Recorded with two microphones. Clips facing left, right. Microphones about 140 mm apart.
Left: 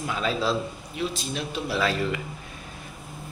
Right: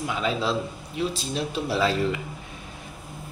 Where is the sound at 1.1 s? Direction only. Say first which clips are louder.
Right 2 dB; 30° right (ahead or behind).